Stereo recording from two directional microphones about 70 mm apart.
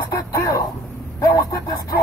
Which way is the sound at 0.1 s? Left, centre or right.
Left.